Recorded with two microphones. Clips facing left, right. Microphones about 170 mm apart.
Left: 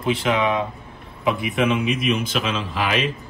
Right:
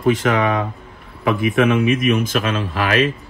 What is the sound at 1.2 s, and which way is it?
A man's voice, 55° right (ahead or behind).